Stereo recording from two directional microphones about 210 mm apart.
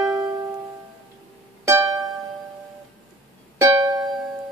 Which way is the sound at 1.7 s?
15° right (ahead or behind).